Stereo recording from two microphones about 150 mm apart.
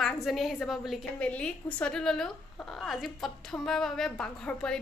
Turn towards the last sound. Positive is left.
turn(degrees=5)  # may be behind; listen again after turning